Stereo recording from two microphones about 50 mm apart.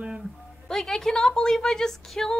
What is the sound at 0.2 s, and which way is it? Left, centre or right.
A woman's voice, centre.